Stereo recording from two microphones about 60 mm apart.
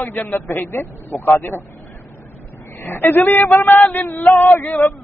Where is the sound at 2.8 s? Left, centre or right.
Left.